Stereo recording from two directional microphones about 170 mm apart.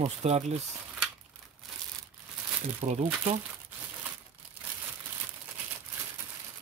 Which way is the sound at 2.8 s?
40° right (ahead or behind).